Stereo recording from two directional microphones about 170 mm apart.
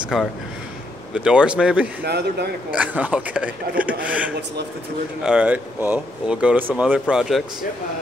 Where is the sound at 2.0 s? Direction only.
75° right (ahead or behind).